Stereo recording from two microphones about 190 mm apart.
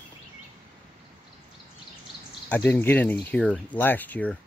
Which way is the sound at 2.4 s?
10° left (ahead or behind).